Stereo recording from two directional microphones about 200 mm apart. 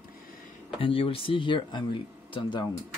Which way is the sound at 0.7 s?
25° left (ahead or behind).